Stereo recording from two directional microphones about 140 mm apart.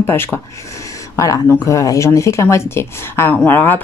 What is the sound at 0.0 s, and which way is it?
Speech, 15° left (ahead or behind).